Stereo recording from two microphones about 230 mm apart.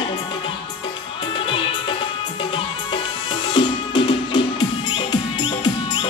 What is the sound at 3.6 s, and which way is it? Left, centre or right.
Music, left.